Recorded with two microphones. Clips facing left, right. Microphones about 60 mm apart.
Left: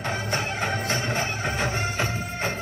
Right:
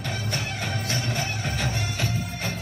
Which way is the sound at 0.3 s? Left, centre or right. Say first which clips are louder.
Left 4 dB; left.